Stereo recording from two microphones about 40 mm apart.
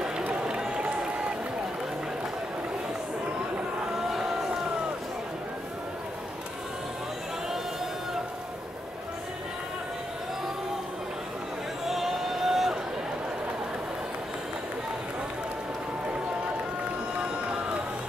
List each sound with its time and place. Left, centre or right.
0.3 s run: right
3.9 s a sound: centre
11.8 s music: centre
17.2 s run: right